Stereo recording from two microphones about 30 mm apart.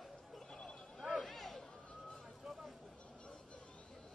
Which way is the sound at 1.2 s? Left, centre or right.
Centre.